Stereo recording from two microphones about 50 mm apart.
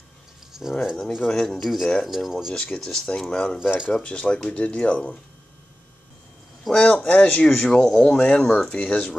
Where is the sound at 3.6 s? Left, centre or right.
Centre.